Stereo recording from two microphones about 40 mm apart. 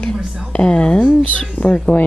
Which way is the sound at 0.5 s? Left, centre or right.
Left.